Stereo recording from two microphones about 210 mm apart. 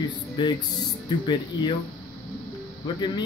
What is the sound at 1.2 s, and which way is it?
Speech, 20° left (ahead or behind).